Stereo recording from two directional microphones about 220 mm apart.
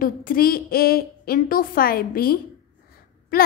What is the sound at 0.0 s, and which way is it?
A woman's voice, 40° left (ahead or behind).